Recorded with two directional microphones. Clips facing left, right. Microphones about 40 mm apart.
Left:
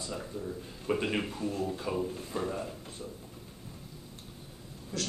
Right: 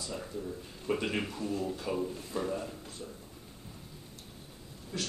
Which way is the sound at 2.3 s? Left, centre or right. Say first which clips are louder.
Even; left.